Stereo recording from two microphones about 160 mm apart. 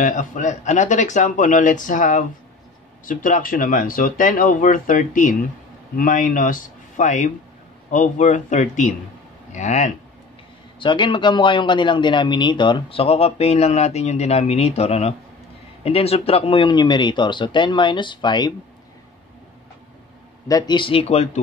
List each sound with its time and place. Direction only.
0.0 s speech: 50° left (ahead or behind)
10.8 s a man's voice: 30° left (ahead or behind)
20.4 s a man's voice: 25° left (ahead or behind); by 21.3 s 40° left (ahead or behind)